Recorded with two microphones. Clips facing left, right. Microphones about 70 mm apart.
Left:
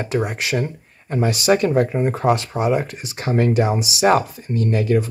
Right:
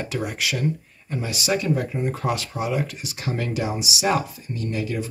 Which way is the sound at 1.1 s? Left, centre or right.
Left.